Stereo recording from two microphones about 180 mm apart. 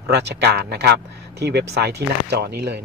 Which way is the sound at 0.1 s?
65° right (ahead or behind).